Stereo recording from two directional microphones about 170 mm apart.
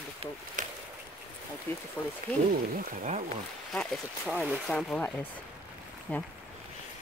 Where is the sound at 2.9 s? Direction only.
50° right (ahead or behind).